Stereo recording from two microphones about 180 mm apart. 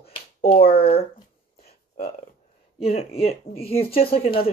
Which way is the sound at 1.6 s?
55° left (ahead or behind).